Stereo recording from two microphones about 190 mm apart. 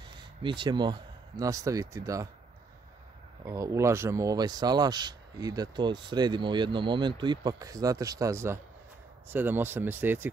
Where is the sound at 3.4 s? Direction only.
15° right (ahead or behind).